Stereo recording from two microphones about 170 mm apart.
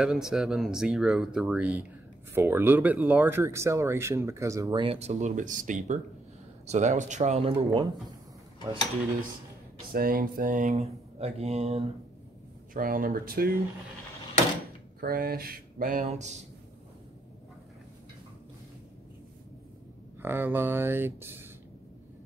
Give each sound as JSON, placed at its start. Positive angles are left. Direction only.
{"t": 0.0, "sound": "speech", "side_deg": -5}
{"t": 4.8, "sound": "speech", "side_deg": -40}
{"t": 9.9, "sound": "speech", "side_deg": -60}
{"t": 12.7, "sound": "speech", "side_deg": -55}
{"t": 15.0, "sound": "speech", "side_deg": -60}
{"t": 20.2, "sound": "speech", "side_deg": -15}